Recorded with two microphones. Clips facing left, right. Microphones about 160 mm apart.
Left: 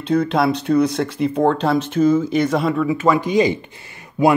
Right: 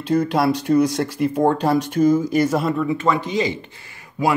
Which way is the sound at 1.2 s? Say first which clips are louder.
Left 1 dB; 10° right (ahead or behind).